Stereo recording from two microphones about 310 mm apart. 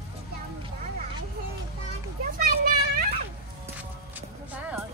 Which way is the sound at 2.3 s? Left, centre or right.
Right.